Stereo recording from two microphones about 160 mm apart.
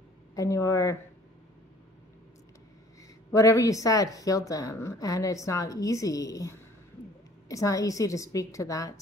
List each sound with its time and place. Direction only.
0.4 s a woman's voice: 20° left (ahead or behind)
3.3 s a woman's voice: 20° left (ahead or behind)